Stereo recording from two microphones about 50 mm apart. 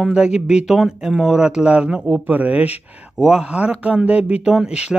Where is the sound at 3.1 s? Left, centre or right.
Centre.